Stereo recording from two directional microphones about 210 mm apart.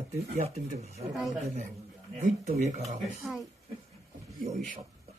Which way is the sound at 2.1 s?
30° right (ahead or behind).